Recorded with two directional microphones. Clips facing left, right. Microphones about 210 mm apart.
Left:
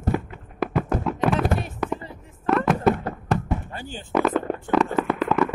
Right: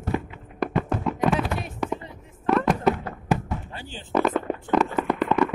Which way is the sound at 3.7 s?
45° left (ahead or behind).